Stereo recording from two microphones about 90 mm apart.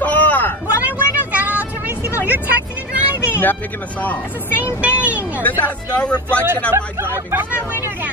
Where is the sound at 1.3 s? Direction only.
20° right (ahead or behind).